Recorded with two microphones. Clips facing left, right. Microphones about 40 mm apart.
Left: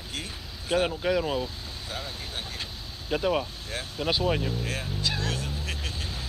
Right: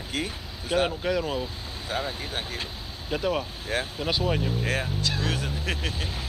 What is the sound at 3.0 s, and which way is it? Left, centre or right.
Speech, centre.